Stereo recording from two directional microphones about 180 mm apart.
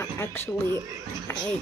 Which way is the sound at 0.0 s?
15° left (ahead or behind).